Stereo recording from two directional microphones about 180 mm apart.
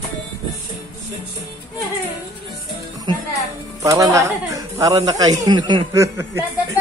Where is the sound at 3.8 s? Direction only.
20° right (ahead or behind).